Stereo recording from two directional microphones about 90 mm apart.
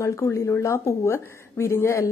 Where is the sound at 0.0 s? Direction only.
35° left (ahead or behind).